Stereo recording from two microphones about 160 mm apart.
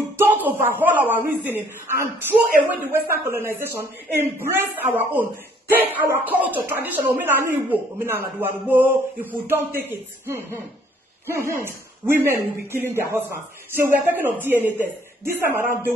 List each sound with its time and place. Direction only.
0.2 s a man's voice: 10° right (ahead or behind)